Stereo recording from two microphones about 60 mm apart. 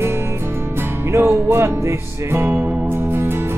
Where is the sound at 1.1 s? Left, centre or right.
Right.